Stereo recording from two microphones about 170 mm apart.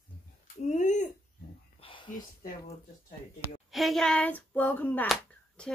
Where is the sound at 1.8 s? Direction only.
30° left (ahead or behind).